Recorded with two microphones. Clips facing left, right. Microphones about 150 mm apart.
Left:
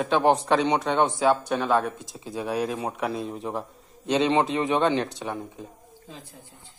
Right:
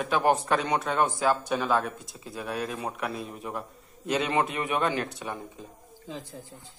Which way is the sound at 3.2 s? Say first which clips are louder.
Left 5 dB; 30° left (ahead or behind).